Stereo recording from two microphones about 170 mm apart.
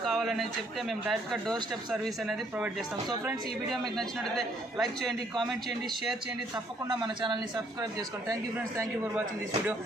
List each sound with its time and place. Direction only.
0.0 s speech: centre (ahead or behind)
3.8 s speech: centre (ahead or behind)
6.5 s speech: 25° right (ahead or behind)
8.5 s a man's voice: 15° right (ahead or behind)